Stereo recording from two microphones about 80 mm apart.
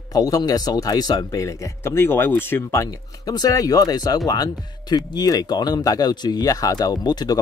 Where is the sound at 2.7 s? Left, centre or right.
Left.